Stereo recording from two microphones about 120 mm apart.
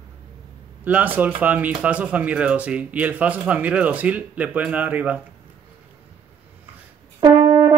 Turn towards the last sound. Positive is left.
turn(degrees=-35)  # may be behind; listen again after turning